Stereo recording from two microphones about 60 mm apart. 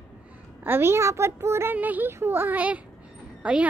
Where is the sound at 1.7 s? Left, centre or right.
Right.